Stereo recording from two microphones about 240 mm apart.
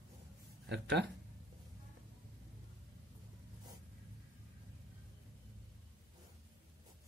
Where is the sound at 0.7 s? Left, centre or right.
Right.